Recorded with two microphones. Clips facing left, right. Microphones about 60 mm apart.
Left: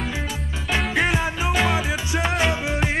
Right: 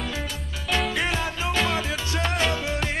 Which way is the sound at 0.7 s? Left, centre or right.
Left.